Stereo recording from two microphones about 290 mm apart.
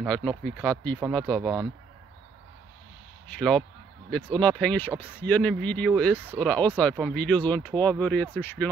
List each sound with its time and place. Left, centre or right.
0.0 s speech: centre
3.3 s speech: centre